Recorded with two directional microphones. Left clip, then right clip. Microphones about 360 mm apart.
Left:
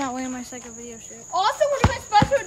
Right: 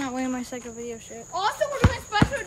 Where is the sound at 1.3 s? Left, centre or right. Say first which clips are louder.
Left 5 dB; centre.